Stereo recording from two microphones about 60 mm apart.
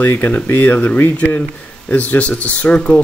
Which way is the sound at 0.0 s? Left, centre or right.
Left.